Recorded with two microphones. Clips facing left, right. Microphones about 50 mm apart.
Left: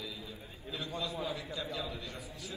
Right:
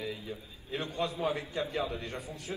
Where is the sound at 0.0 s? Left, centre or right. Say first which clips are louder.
Right 6 dB; right.